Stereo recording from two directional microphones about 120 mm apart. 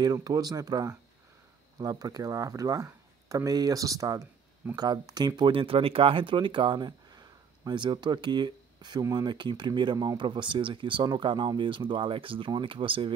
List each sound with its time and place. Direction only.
0.0 s speech: 30° right (ahead or behind)